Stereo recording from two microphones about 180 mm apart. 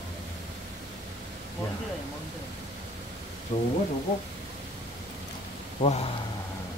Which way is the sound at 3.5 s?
30° left (ahead or behind).